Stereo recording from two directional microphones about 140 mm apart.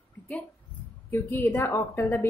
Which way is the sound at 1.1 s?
15° left (ahead or behind).